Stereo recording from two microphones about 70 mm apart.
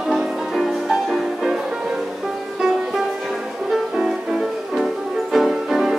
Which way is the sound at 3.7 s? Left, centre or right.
Centre.